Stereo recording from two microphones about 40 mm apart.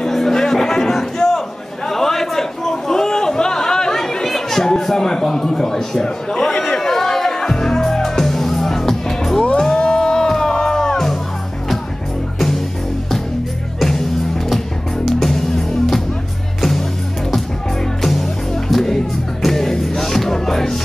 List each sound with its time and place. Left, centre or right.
0.0 s music: centre
1.9 s a sound: centre
6.8 s music: centre
12.4 s music: centre
13.7 s music: centre
15.0 s music: centre
18.0 s music: centre